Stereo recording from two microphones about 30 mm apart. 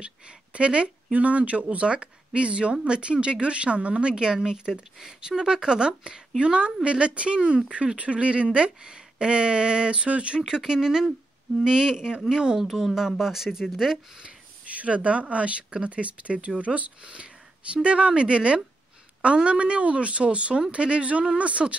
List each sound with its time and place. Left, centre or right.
0.5 s speech: right
7.7 s speech: right
10.7 s speech: centre
12.5 s speech: centre
14.8 s speech: right
17.0 s a sound: right
17.8 s speech: right